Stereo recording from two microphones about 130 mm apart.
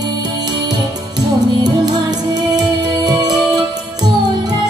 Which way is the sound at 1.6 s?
30° right (ahead or behind).